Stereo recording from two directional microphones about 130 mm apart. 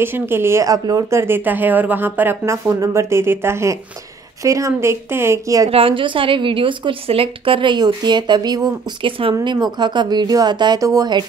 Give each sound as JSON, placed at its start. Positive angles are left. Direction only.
{"t": 0.0, "sound": "speech", "side_deg": -15}
{"t": 5.7, "sound": "a woman's voice", "side_deg": -45}